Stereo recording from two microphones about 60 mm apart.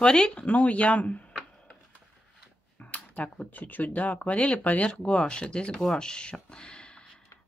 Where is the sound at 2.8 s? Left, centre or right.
Left.